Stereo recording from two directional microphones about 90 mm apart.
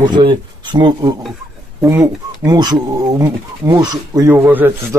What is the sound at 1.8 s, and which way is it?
Speech, 30° right (ahead or behind).